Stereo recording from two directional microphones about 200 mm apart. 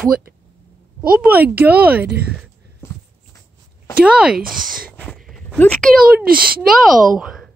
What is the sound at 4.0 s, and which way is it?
A woman's voice, 5° right (ahead or behind).